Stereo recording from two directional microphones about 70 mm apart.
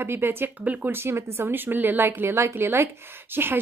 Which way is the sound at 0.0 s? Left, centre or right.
Right.